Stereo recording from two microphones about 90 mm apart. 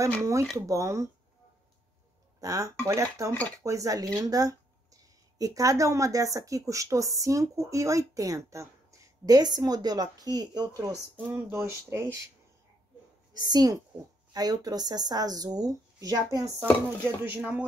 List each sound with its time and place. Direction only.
0.2 s a woman's voice: 35° right (ahead or behind)
2.4 s a woman's voice: 40° right (ahead or behind)
11.3 s a woman's voice: 30° right (ahead or behind)
13.3 s a woman's voice: 45° right (ahead or behind)
17.2 s speech: 20° right (ahead or behind)